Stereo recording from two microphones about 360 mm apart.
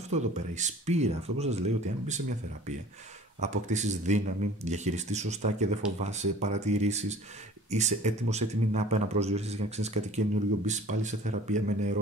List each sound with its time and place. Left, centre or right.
0.1 s a man's voice: centre
3.3 s a man's voice: centre